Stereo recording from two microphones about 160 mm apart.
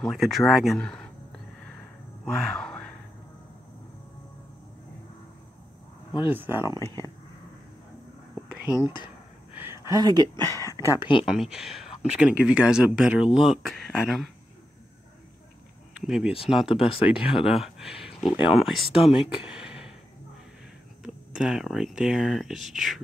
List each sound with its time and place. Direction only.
0.0 s speech: centre (ahead or behind)
6.3 s speech: 15° right (ahead or behind)
8.5 s whispering: 5° right (ahead or behind)
8.7 s speech: 25° left (ahead or behind)
9.6 s speech: 20° right (ahead or behind)
10.5 s speech: 20° left (ahead or behind)
11.1 s speech: 5° right (ahead or behind)
15.9 s a sound: 5° right (ahead or behind)
16.6 s speech: 35° left (ahead or behind)
17.1 s speech: 5° right (ahead or behind)
21.0 s speech: 5° right (ahead or behind)